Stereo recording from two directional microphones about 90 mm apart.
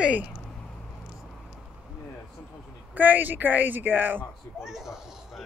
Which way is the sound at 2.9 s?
20° right (ahead or behind).